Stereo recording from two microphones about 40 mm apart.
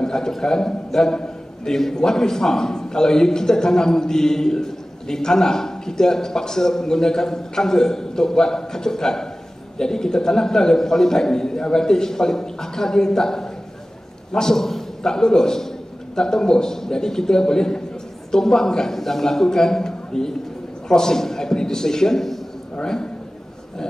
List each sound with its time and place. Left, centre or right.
0.0 s a man's voice: centre